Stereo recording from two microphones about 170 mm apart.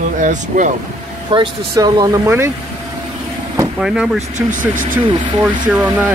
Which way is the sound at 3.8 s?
5° right (ahead or behind).